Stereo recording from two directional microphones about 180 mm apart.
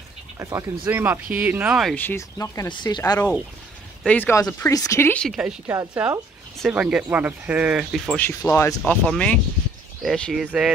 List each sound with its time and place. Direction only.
0.4 s speech: 15° right (ahead or behind)
2.0 s speech: 15° left (ahead or behind)
3.0 s speech: 10° left (ahead or behind)
5.7 s speech: 10° right (ahead or behind)
8.2 s speech: 15° left (ahead or behind); by 10.7 s 5° right (ahead or behind)